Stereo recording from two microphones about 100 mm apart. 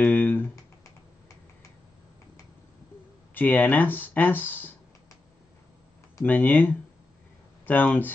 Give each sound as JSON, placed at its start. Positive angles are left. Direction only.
{"t": 0.0, "sound": "computer keyboard", "side_deg": 15}
{"t": 3.3, "sound": "speech", "side_deg": 20}
{"t": 6.2, "sound": "speech", "side_deg": 20}